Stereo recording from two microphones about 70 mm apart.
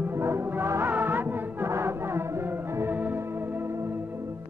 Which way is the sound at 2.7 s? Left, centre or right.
Right.